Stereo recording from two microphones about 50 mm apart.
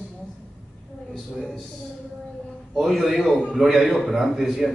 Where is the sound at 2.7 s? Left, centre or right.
Centre.